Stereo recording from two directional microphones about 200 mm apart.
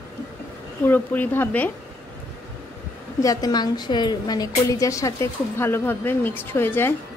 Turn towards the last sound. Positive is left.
turn(degrees=10)  # may be behind; listen again after turning